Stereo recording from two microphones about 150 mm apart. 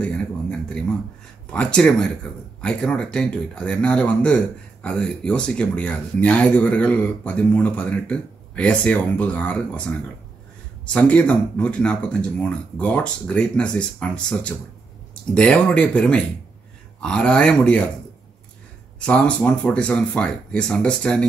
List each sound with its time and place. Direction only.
0.0 s a sound: 5° left (ahead or behind)
1.5 s speech: 5° left (ahead or behind)
10.9 s speech: 10° left (ahead or behind)
18.9 s speech: 10° left (ahead or behind)